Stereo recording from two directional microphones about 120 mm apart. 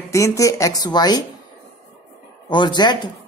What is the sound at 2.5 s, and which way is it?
Speech, 40° left (ahead or behind).